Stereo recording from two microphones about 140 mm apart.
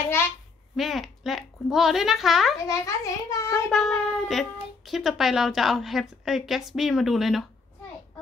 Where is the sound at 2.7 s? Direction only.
25° left (ahead or behind).